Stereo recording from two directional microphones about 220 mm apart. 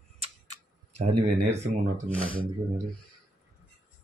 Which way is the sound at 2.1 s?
5° left (ahead or behind).